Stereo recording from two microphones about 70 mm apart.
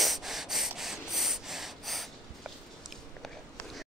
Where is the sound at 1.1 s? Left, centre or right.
Centre.